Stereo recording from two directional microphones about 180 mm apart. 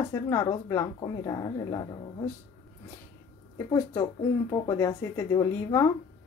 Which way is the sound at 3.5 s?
15° left (ahead or behind).